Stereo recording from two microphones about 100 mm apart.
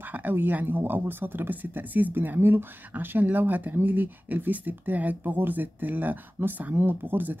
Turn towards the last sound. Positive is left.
turn(degrees=-20)  # may be behind; listen again after turning